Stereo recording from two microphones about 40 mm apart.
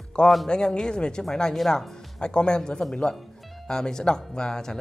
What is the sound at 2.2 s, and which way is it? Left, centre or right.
A woman's voice, left.